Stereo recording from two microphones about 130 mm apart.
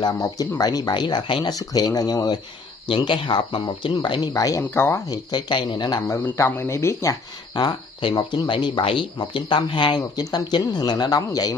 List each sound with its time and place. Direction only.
0.0 s speech: 25° left (ahead or behind)
6.2 s speech: 20° left (ahead or behind)